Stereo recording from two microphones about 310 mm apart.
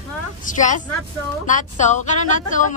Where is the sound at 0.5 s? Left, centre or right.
Left.